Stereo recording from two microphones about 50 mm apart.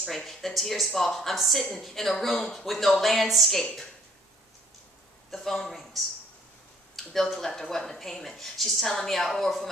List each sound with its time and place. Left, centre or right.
0.0 s a woman's voice: centre
5.3 s a woman's voice: centre